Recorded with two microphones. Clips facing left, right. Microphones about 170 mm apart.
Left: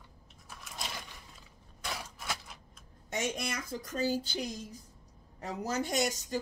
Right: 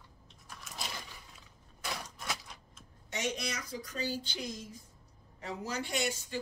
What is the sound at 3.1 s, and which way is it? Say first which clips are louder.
Speech: left 2 dB; 50° left (ahead or behind).